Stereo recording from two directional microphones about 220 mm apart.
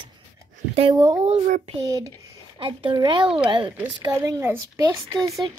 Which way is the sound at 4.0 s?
15° right (ahead or behind).